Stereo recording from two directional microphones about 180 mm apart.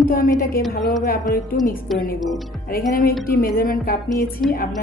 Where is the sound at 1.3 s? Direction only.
50° left (ahead or behind).